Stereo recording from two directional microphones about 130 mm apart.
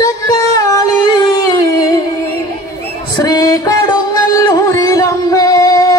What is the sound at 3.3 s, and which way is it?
Music, 25° left (ahead or behind).